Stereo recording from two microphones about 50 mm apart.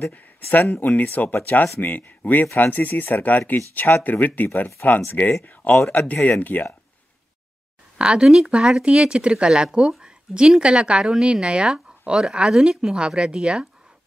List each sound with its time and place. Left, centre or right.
0.0 s speech: left
8.0 s speech: centre